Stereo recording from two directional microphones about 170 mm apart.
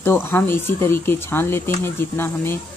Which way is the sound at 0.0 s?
15° left (ahead or behind).